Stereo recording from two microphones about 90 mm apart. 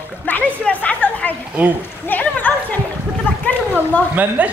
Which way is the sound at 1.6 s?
15° right (ahead or behind).